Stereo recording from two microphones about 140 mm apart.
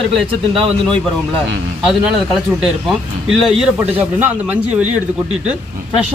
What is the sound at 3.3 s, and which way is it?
A man's voice, centre (ahead or behind).